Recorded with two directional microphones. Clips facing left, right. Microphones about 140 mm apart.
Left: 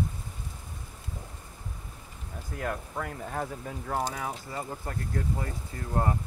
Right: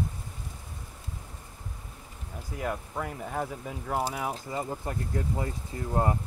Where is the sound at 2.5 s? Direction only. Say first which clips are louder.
Right 1 dB; 5° right (ahead or behind).